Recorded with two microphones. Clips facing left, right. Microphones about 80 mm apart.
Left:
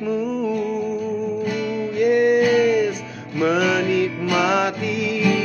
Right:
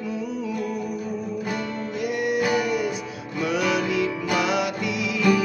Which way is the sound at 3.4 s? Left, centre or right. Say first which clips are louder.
Left 5 dB; left.